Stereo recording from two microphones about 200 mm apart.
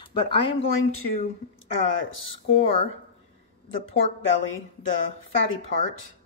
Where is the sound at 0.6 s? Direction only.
85° left.